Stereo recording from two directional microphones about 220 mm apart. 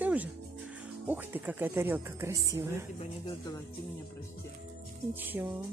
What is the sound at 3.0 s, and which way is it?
Speech, 20° left (ahead or behind).